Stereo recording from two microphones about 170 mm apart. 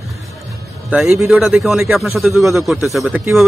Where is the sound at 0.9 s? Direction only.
Centre (ahead or behind).